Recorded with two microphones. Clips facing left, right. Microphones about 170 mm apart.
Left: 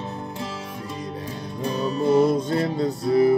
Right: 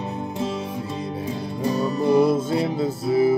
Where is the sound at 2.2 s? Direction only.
5° right (ahead or behind).